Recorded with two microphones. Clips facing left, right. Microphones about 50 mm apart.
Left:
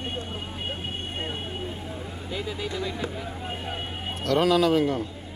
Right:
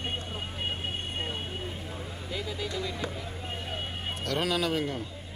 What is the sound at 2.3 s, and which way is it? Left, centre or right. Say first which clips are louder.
Speech: left 3 dB; centre.